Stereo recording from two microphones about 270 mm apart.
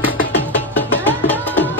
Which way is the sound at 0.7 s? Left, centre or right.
Centre.